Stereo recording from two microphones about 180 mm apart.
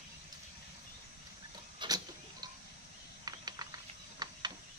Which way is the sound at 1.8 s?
20° right (ahead or behind).